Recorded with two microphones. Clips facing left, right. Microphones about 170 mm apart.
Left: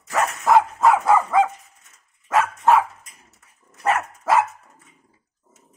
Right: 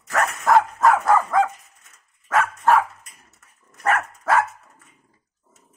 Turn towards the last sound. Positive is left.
turn(degrees=10)  # may be behind; listen again after turning